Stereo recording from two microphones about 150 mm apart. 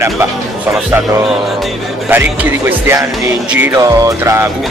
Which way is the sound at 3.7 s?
20° right (ahead or behind).